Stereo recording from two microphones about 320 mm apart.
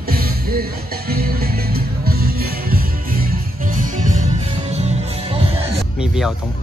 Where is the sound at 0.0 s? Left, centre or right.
Right.